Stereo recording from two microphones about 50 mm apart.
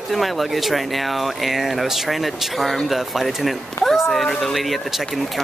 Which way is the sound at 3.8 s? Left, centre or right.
Left.